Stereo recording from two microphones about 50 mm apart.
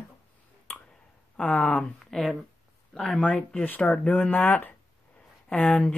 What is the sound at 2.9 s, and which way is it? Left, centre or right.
Speech, centre.